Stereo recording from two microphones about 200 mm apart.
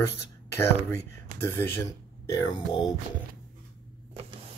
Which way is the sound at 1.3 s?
40° right (ahead or behind).